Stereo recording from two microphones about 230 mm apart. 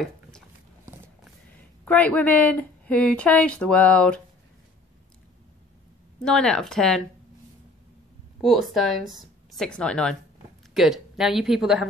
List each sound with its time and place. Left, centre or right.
1.9 s speech: centre
6.2 s speech: centre
8.4 s speech: centre